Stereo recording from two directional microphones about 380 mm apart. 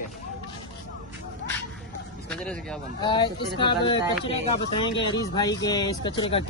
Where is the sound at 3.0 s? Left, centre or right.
Centre.